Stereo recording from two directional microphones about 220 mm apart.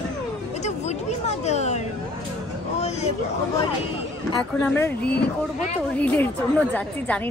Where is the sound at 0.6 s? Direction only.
30° left (ahead or behind).